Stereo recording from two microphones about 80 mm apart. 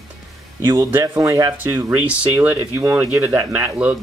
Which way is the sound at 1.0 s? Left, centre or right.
Right.